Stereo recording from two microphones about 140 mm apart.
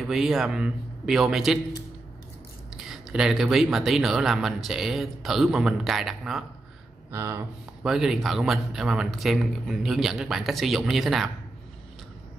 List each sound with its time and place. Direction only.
0.0 s speech: centre (ahead or behind)
2.7 s speech: 5° right (ahead or behind)
7.1 s speech: 20° right (ahead or behind)
7.8 s speech: 5° right (ahead or behind)